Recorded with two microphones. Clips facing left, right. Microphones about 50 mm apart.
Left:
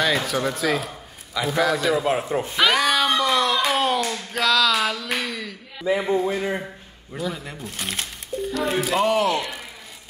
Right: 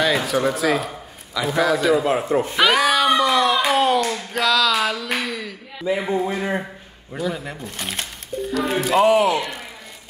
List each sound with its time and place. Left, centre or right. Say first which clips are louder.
0.0 s speech: right 3 dB; centre
6.2 s speech: right 1 dB; centre
7.2 s speech: right 3 dB; centre